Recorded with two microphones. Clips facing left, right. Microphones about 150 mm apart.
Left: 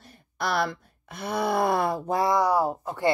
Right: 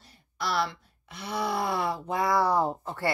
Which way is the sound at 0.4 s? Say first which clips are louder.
Left 3 dB; 55° left (ahead or behind).